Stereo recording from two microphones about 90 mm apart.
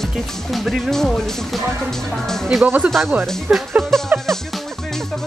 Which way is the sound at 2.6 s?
20° right (ahead or behind).